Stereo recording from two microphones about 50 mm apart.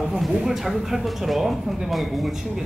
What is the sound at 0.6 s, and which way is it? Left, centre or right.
Speech, centre.